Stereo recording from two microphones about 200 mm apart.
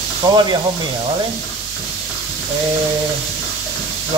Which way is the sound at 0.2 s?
20° right (ahead or behind).